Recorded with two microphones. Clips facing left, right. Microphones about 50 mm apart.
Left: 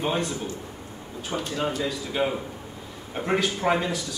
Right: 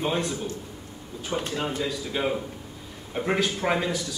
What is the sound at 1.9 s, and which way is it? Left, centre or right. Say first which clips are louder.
A man's voice: left 1 dB; centre.